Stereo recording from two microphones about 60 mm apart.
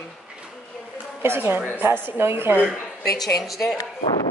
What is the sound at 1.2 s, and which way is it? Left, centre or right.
A woman's voice, right.